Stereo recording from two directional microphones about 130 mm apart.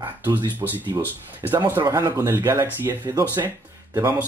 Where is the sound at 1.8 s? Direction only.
25° right (ahead or behind).